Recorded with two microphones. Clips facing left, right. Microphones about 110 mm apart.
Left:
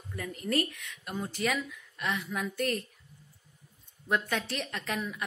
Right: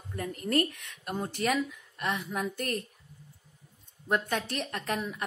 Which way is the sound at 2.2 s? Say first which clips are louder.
Left 1 dB; 25° right (ahead or behind).